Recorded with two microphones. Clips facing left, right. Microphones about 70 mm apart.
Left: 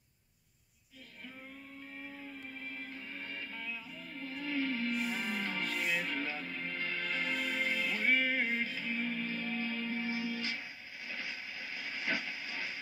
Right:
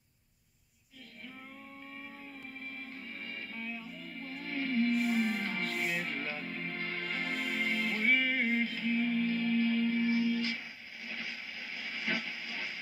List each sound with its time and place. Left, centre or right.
4.2 s music: right
9.7 s music: left
10.0 s music: right
11.1 s a sound: right